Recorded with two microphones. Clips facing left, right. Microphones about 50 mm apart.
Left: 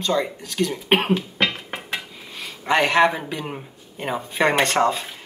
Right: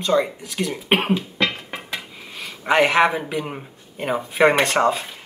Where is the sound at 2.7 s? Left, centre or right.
Centre.